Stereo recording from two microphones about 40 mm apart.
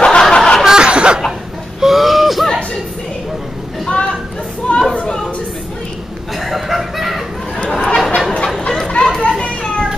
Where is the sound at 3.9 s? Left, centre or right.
Left.